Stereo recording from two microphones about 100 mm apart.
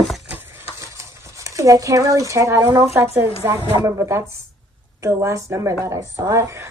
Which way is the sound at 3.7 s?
30° right (ahead or behind).